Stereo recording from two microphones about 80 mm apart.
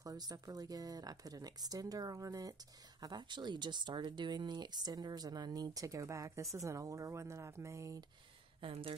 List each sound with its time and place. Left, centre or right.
0.0 s speech: right
3.0 s speech: right
8.5 s speech: right